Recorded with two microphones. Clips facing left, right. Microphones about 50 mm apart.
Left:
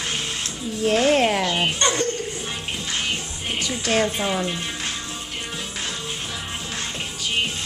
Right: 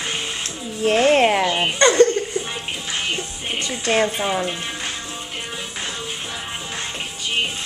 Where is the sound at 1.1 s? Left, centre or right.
Centre.